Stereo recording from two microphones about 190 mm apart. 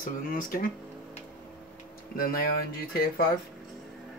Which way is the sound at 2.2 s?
50° left (ahead or behind).